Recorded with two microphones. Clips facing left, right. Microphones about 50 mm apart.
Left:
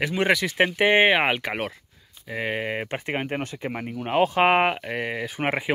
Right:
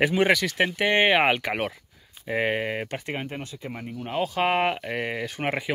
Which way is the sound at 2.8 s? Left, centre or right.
Left.